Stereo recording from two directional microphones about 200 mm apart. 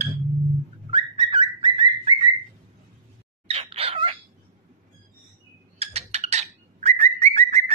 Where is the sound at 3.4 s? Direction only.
30° right (ahead or behind).